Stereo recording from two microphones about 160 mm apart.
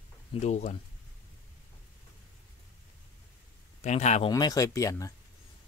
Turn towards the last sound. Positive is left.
turn(degrees=20)  # may be behind; listen again after turning